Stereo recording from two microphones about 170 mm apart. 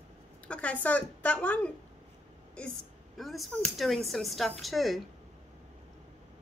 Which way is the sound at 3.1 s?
Centre (ahead or behind).